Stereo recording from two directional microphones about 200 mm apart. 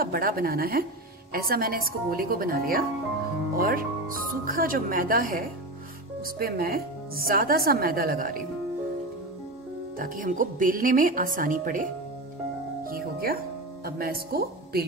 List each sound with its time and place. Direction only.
0.0 s a woman's voice: 45° right (ahead or behind)
9.9 s a woman's voice: 45° right (ahead or behind)